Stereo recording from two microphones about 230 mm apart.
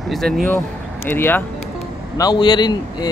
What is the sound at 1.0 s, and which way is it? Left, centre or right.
A man's voice, centre.